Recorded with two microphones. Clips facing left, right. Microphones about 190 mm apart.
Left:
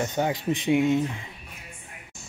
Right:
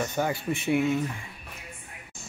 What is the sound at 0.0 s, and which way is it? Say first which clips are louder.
Speech: left 2 dB; 20° left (ahead or behind).